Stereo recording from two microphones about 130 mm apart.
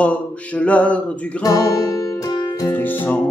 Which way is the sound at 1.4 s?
25° left (ahead or behind).